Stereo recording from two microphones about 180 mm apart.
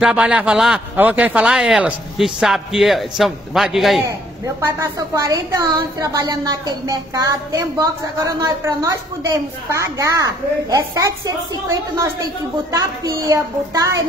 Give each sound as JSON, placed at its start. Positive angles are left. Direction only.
{"t": 0.0, "sound": "a man's voice", "side_deg": -5}
{"t": 4.6, "sound": "a woman's voice", "side_deg": -15}